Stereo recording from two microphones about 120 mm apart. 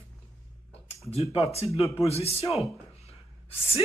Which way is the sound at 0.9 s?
55° left (ahead or behind).